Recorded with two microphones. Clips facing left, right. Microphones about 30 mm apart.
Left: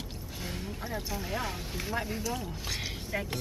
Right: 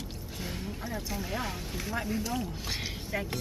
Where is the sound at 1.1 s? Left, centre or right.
Centre.